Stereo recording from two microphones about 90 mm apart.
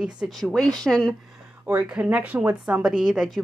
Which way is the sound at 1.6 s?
20° right (ahead or behind).